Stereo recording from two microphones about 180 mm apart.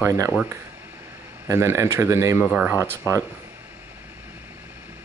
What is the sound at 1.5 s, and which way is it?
Speech, 15° right (ahead or behind).